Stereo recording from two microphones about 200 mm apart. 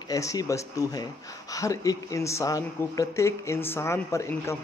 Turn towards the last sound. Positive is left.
turn(degrees=15)  # may be behind; listen again after turning